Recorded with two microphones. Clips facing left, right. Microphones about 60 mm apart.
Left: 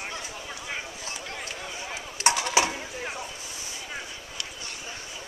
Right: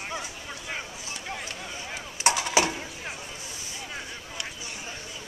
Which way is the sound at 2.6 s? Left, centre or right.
Centre.